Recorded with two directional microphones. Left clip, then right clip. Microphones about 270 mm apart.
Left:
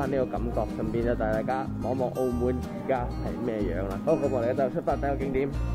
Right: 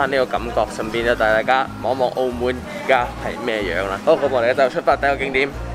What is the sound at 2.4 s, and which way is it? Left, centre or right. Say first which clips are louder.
Speech: right 7 dB; centre.